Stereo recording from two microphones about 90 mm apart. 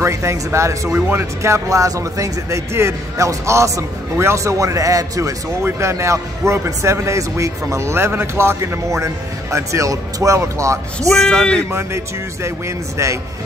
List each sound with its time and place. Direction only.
0.0 s a man's voice: 30° right (ahead or behind)
11.0 s speech: 5° left (ahead or behind)
12.4 s a man's voice: 35° right (ahead or behind)